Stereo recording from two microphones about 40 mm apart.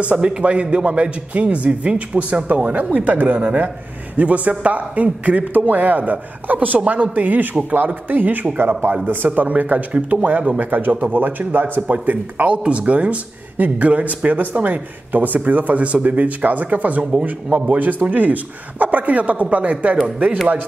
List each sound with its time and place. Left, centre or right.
0.2 s speech: right
12.6 s speech: right
17.7 s speech: right